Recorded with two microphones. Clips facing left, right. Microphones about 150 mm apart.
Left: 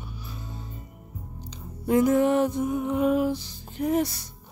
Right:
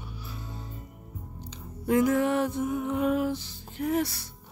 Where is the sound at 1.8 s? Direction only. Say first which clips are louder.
Left 3 dB; 20° left (ahead or behind).